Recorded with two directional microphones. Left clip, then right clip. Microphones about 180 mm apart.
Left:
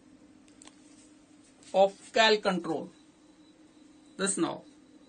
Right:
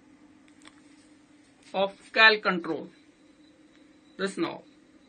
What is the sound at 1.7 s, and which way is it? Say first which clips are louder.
Speech: left 4 dB; 20° left (ahead or behind).